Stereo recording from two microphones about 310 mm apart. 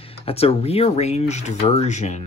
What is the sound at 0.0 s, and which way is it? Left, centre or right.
Speech, centre.